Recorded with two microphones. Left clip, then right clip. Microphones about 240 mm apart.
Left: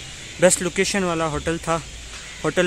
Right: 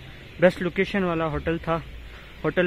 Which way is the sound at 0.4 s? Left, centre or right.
Centre.